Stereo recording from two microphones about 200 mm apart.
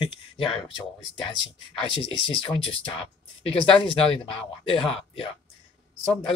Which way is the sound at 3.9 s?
25° left (ahead or behind).